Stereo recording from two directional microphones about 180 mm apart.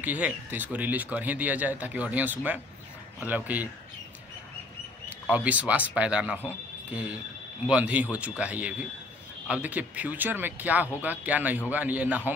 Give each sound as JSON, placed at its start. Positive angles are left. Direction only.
{"t": 0.0, "sound": "speech", "side_deg": -10}
{"t": 5.2, "sound": "speech", "side_deg": -10}